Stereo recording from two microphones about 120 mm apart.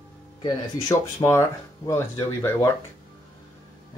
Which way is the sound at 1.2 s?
35° left (ahead or behind).